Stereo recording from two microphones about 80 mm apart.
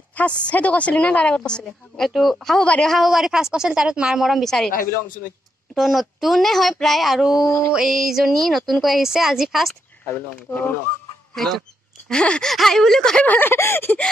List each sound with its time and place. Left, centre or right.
0.1 s a woman's voice: centre
5.8 s speech: centre
7.4 s mantra: left
7.7 s speech: centre
10.0 s speech: left
11.3 s a woman's voice: centre
13.3 s speech: left